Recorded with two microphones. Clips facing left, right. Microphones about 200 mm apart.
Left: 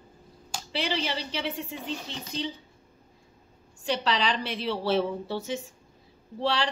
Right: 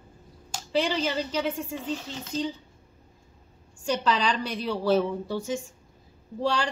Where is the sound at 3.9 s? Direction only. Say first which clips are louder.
Right 2 dB; 45° right (ahead or behind).